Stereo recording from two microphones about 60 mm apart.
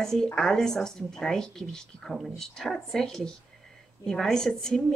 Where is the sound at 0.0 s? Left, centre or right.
Centre.